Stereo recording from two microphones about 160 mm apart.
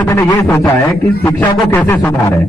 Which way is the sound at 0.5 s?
25° left (ahead or behind).